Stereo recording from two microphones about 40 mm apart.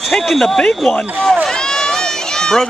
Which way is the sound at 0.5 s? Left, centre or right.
Left.